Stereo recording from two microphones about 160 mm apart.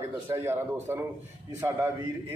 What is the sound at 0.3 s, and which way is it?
Speech, 15° right (ahead or behind).